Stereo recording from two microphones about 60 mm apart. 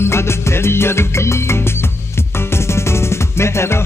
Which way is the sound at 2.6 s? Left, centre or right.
Left.